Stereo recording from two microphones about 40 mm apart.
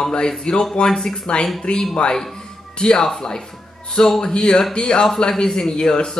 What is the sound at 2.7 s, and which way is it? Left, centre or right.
Speech, left.